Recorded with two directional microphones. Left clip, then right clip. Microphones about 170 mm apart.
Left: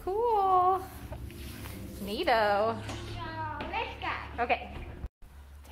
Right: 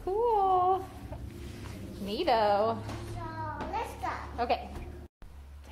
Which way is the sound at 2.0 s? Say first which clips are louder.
Even; 5° right (ahead or behind).